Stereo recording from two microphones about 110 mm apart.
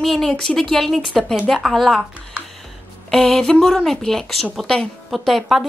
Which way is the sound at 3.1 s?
5° left (ahead or behind).